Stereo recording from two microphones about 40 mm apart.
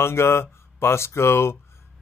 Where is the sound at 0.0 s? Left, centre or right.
Left.